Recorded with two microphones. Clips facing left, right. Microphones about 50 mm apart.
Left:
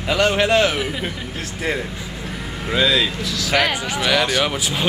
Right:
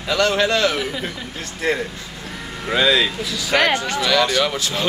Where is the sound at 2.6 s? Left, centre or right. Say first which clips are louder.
Right 1 dB; centre.